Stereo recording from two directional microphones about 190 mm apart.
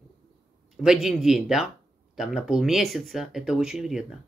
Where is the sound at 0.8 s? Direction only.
Centre (ahead or behind).